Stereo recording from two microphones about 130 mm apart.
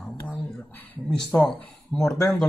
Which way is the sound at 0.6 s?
10° left (ahead or behind).